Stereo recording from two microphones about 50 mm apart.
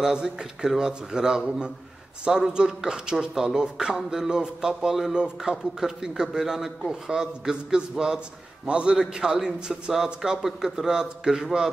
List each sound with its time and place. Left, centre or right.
0.0 s a man's voice: centre